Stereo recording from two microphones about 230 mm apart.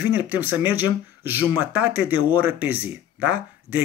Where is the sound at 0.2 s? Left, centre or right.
Centre.